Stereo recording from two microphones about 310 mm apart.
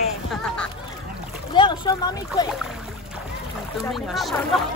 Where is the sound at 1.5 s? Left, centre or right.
Centre.